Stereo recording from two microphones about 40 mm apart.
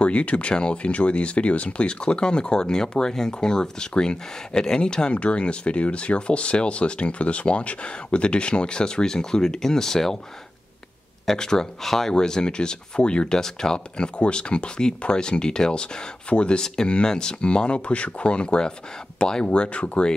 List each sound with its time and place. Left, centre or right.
0.0 s speech: left; by 10.1 s centre
11.2 s speech: centre
13.4 s speech: centre; by 20.1 s left